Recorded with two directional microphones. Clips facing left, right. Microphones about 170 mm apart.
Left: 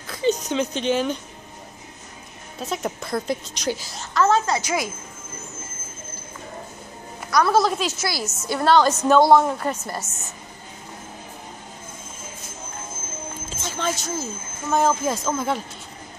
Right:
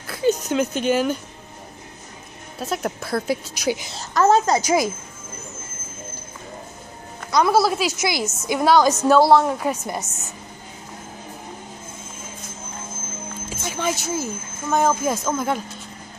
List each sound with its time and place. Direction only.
0.0 s speech: 5° right (ahead or behind)
2.6 s a woman's voice: centre (ahead or behind)
4.0 s a woman's voice: 40° right (ahead or behind)
7.2 s a woman's voice: 25° right (ahead or behind)
7.5 s a woman's voice: 10° right (ahead or behind)
13.5 s speech: 10° right (ahead or behind)